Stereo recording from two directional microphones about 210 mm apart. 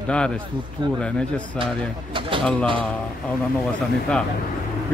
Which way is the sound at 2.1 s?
25° right (ahead or behind).